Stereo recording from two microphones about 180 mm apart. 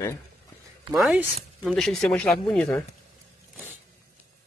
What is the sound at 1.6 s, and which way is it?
Speech, centre (ahead or behind).